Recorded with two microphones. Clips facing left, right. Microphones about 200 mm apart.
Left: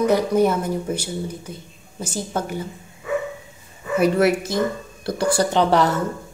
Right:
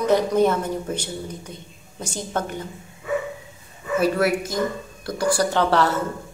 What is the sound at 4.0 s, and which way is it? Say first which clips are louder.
Speech: left 3 dB; 20° left (ahead or behind).